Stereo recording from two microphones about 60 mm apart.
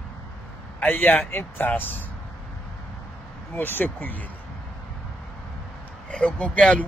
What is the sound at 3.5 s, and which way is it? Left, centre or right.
Speech, left.